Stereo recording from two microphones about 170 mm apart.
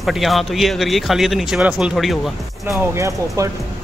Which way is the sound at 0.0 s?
Centre (ahead or behind).